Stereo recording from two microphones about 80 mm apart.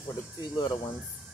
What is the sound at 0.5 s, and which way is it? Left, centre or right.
Speech, left.